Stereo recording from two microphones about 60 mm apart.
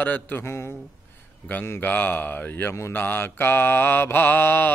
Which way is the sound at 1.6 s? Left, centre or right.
Left.